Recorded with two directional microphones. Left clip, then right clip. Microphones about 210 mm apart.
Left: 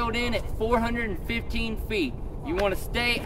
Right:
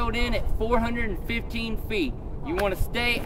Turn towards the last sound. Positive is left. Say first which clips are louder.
# even
turn(degrees=5)  # may be behind; listen again after turning